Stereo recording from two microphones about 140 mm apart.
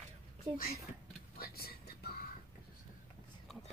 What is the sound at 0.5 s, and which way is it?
Speech, 90° left.